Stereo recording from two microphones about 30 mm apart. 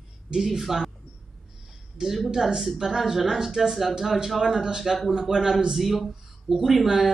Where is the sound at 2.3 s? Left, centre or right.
Centre.